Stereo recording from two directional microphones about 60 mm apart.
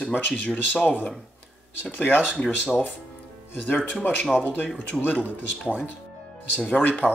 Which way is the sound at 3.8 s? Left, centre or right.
Left.